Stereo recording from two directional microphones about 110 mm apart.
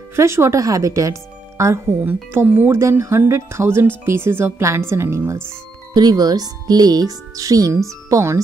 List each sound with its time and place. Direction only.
0.1 s speech: 25° right (ahead or behind)
5.9 s speech: 35° right (ahead or behind)